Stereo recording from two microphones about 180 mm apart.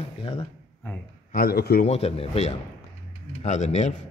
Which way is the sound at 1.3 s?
55° left (ahead or behind).